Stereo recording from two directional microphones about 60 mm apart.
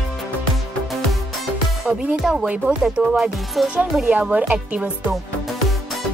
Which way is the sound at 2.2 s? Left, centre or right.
Centre.